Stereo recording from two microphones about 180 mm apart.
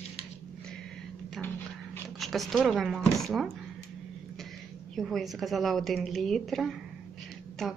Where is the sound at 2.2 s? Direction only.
Centre (ahead or behind).